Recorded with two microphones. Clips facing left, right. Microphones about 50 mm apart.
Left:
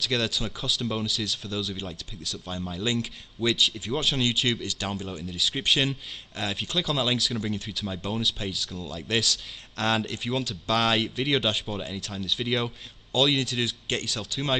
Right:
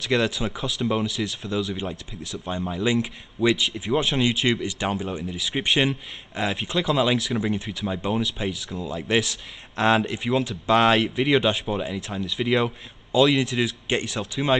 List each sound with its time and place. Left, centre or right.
0.0 s speech: centre
11.0 s speech: centre
11.6 s speech: right